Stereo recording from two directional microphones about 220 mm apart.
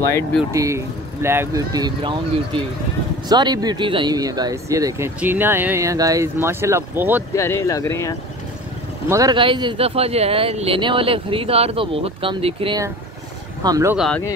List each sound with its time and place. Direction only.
0.1 s speech: 5° left (ahead or behind)
0.5 s speech: 15° right (ahead or behind)
3.3 s speech: 20° right (ahead or behind)
7.3 s speech: 15° left (ahead or behind)
9.1 s speech: 20° right (ahead or behind)
13.9 s speech: centre (ahead or behind)